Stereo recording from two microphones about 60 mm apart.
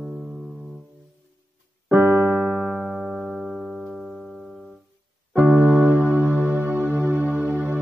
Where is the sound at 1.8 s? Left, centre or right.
Right.